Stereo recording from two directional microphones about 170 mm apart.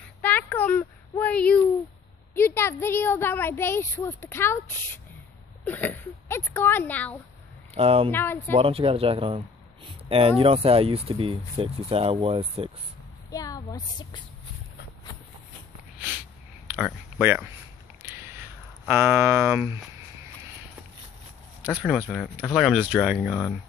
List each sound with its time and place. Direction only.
0.2 s a sound: 10° left (ahead or behind)
2.3 s a woman's voice: 15° left (ahead or behind)
7.7 s speech: 35° right (ahead or behind)
8.1 s a woman's voice: 15° left (ahead or behind)
8.5 s speech: 35° right (ahead or behind)
13.3 s speech: 20° left (ahead or behind)
16.7 s speech: 10° right (ahead or behind)
18.0 s a sound: 15° right (ahead or behind)
21.6 s speech: 5° right (ahead or behind)